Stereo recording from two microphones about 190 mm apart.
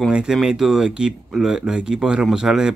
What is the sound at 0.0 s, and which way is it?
Speech, 5° right (ahead or behind).